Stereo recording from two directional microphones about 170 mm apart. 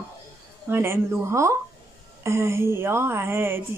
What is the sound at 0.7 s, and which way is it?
Speech, 15° right (ahead or behind).